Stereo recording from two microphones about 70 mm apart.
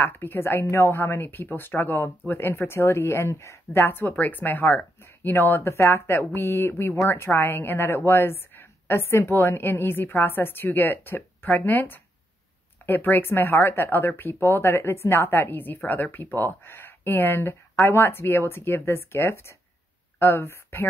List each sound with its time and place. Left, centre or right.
0.0 s a woman's voice: left
3.8 s a woman's voice: left